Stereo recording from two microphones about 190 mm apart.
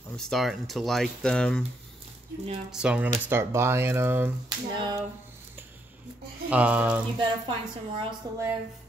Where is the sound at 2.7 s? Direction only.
5° right (ahead or behind).